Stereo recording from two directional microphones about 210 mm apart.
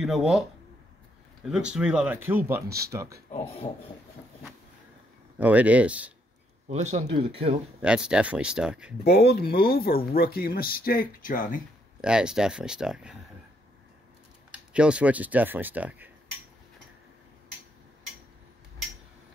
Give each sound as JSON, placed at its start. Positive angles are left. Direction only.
{"t": 0.0, "sound": "speech", "side_deg": 0}
{"t": 3.3, "sound": "speech", "side_deg": 30}
{"t": 5.4, "sound": "speech", "side_deg": -5}
{"t": 6.7, "sound": "speech", "side_deg": -35}
{"t": 7.8, "sound": "speech", "side_deg": -5}
{"t": 9.0, "sound": "speech", "side_deg": 50}
{"t": 12.0, "sound": "speech", "side_deg": -5}
{"t": 14.5, "sound": "speech", "side_deg": -5}